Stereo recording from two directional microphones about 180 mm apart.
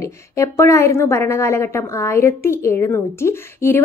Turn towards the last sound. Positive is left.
turn(degrees=15)  # may be behind; listen again after turning